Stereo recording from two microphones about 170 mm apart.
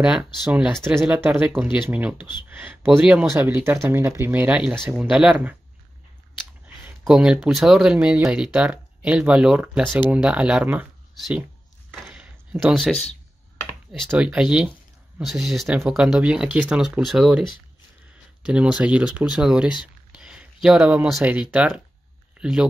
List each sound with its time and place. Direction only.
0.0 s speech: 5° right (ahead or behind)
7.1 s speech: 5° right (ahead or behind)
11.9 s a sound: 5° right (ahead or behind)
12.8 s speech: centre (ahead or behind)
18.4 s speech: 5° right (ahead or behind)